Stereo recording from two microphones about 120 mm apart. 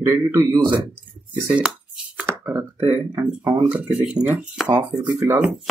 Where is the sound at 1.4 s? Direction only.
10° right (ahead or behind).